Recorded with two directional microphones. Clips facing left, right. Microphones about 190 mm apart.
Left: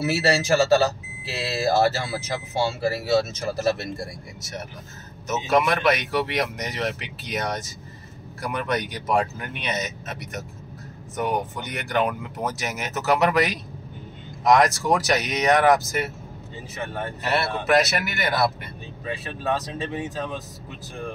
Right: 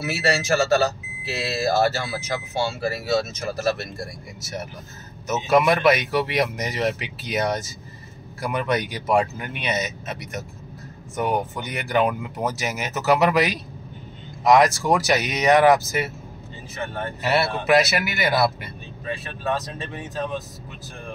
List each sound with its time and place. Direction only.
0.0 s speech: 30° left (ahead or behind)
5.3 s speech: centre (ahead or behind)
17.2 s speech: 5° right (ahead or behind)